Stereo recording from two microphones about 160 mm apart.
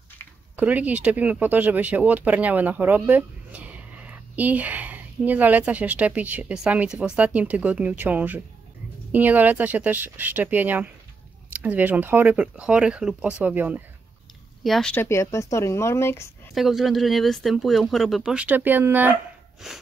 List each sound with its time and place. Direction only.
0.6 s speech: 10° right (ahead or behind)
14.6 s speech: centre (ahead or behind)
15.0 s speech: 15° left (ahead or behind)
16.5 s speech: centre (ahead or behind)